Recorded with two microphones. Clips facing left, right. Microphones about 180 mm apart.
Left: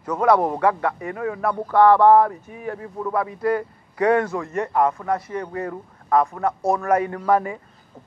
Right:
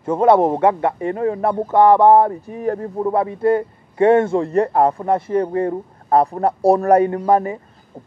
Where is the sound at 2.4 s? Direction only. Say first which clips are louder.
Right 9 dB; 40° right (ahead or behind).